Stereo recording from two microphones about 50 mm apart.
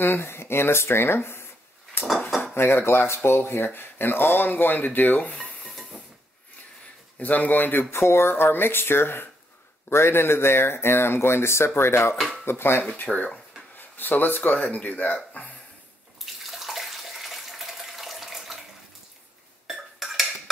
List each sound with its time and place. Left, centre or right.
0.0 s speech: left
2.5 s speech: left
7.2 s speech: left
7.9 s speech: left
9.8 s speech: left
12.9 s speech: left
16.4 s bathtub: centre
19.7 s dishes: centre